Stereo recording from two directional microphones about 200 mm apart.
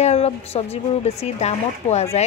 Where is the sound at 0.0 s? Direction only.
30° left (ahead or behind).